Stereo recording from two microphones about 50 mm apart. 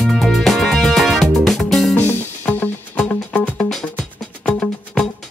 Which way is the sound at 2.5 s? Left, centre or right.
Left.